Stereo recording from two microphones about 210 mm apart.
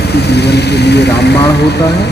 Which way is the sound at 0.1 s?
50° left (ahead or behind).